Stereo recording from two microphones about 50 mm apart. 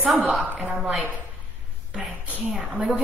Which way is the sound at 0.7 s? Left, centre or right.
Right.